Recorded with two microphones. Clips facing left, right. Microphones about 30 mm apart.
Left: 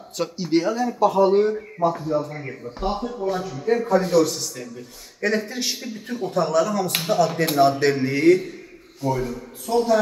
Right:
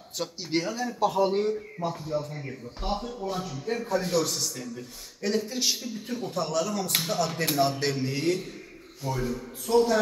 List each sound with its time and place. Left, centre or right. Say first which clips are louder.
0.2 s a man's voice: left 8 dB; centre
2.3 s speech: left 5 dB; left
2.8 s a man's voice: left 6 dB; centre
3.8 s speech: left 6 dB; centre
4.1 s a man's voice: left 8 dB; centre
5.2 s speech: left 4 dB; left
7.8 s a sound: left 8 dB; left
8.2 s a man's voice: left 11 dB; centre